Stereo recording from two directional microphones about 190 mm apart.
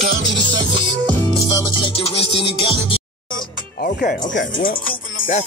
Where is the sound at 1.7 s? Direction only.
30° left (ahead or behind).